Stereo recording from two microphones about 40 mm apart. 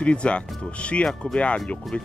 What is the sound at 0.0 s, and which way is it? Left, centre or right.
Speech, left.